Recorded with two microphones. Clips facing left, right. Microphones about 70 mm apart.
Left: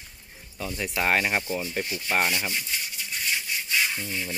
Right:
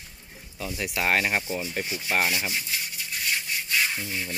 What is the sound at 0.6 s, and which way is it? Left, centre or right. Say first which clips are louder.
Speech: left 1 dB; centre.